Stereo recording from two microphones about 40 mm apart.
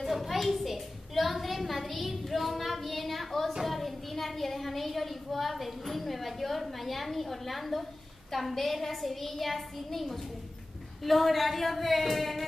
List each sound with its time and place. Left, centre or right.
0.0 s a child's voice: centre